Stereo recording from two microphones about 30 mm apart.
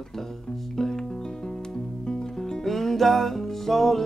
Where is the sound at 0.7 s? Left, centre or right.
Centre.